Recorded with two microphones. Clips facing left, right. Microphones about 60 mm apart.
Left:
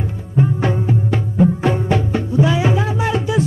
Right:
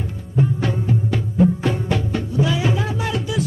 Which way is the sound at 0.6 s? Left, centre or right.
Left.